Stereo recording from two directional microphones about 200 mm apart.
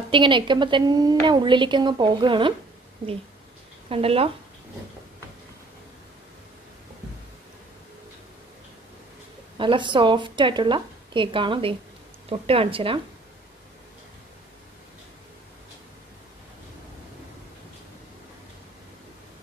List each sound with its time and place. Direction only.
0.1 s a woman's voice: 25° right (ahead or behind)
3.9 s a woman's voice: 30° right (ahead or behind)
9.6 s a woman's voice: 25° right (ahead or behind)